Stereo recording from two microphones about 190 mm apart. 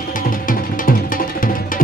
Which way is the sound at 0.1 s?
45° left (ahead or behind).